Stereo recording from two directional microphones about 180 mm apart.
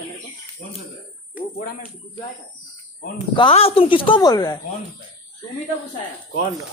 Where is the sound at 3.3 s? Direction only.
30° left (ahead or behind).